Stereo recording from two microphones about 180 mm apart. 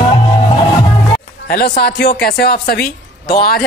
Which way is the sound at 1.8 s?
60° left (ahead or behind).